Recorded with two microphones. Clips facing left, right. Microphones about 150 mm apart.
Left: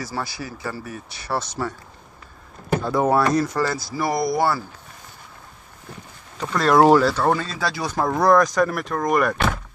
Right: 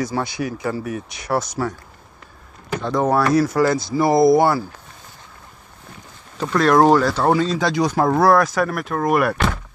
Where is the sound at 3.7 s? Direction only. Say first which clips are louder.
Right 7 dB; 25° right (ahead or behind).